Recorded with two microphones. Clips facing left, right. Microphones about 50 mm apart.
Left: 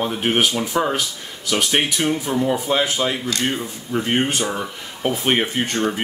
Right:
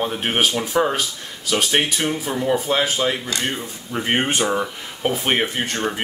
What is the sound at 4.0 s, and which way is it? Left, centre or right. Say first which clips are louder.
Speech: right 1 dB; right.